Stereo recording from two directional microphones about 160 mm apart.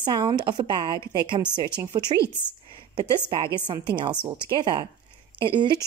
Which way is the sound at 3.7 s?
30° right (ahead or behind).